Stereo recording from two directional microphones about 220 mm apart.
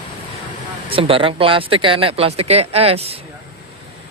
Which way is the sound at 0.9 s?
25° right (ahead or behind).